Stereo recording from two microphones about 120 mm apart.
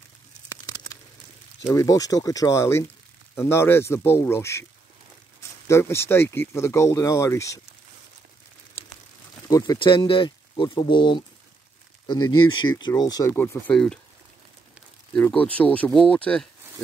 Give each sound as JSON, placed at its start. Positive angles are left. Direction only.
{"t": 1.7, "sound": "speech", "side_deg": 25}
{"t": 5.7, "sound": "speech", "side_deg": 20}
{"t": 9.5, "sound": "speech", "side_deg": 30}
{"t": 9.8, "sound": "speech", "side_deg": 45}
{"t": 13.3, "sound": "speech", "side_deg": 15}
{"t": 15.1, "sound": "speech", "side_deg": 10}